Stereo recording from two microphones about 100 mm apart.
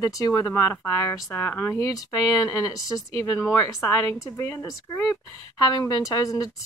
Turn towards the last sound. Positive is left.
turn(degrees=35)  # may be behind; listen again after turning